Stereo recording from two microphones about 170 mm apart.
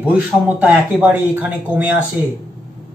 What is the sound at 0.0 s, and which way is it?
A man's voice, 10° right (ahead or behind).